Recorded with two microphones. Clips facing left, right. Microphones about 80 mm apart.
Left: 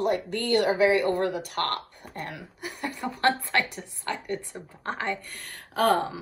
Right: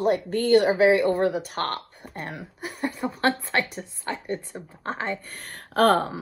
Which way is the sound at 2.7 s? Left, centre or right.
Right.